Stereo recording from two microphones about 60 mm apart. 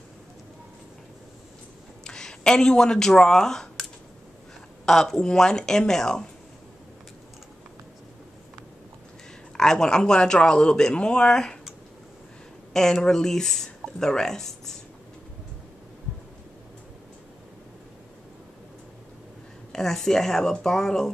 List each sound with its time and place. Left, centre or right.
2.0 s speech: centre
4.8 s speech: centre
9.6 s speech: centre
12.7 s speech: centre
19.7 s speech: centre